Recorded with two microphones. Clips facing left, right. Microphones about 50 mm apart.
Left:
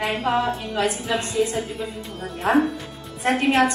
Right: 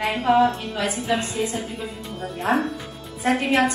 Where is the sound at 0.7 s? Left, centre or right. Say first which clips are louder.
Left 1 dB; left.